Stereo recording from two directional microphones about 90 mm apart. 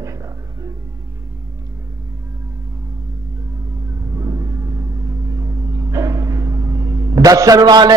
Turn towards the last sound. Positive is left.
turn(degrees=-50)  # may be behind; listen again after turning